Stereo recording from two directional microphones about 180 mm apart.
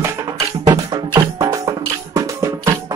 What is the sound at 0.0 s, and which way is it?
Music, 20° right (ahead or behind).